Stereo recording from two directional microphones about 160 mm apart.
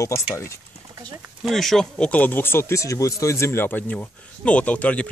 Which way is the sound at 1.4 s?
Centre (ahead or behind).